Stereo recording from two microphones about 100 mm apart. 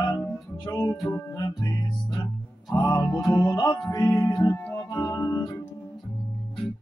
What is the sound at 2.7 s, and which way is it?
Music, 45° left (ahead or behind).